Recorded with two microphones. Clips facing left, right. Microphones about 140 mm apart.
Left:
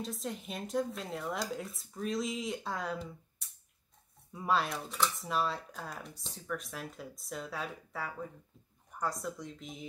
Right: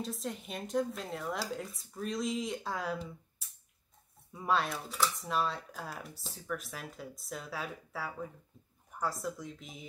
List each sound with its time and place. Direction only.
0.0 s speech: centre (ahead or behind)